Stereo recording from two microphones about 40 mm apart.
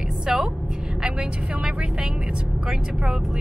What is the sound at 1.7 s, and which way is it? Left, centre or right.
Speech, centre.